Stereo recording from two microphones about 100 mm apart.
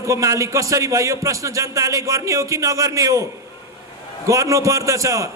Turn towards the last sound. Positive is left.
turn(degrees=-30)  # may be behind; listen again after turning